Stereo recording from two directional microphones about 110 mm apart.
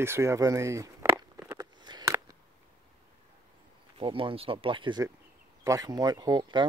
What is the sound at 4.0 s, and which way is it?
Speech, 50° right (ahead or behind).